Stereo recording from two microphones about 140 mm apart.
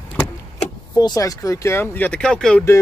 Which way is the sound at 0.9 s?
25° left (ahead or behind).